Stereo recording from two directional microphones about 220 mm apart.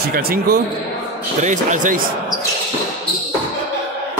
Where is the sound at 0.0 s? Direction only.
45° right (ahead or behind).